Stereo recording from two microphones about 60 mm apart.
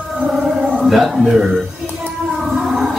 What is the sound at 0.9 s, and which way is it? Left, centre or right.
Speech, centre.